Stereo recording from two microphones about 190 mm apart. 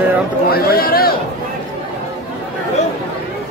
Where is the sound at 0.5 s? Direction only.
50° left (ahead or behind).